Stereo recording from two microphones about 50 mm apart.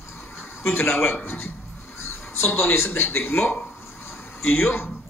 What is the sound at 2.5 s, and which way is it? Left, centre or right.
Speech, left.